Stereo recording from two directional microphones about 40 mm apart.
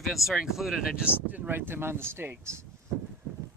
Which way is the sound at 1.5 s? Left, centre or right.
Right.